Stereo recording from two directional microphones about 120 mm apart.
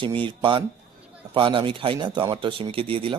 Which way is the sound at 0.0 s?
45° right (ahead or behind).